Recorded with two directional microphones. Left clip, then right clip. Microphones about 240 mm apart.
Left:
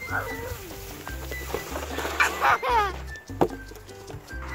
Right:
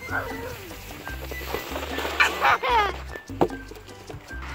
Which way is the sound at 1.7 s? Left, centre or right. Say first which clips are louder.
Right 2 dB; centre.